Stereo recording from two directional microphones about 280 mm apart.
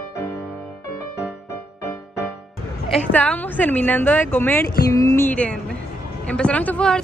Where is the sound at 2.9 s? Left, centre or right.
Centre.